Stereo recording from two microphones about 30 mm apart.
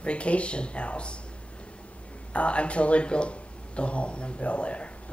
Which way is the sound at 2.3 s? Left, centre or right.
Left.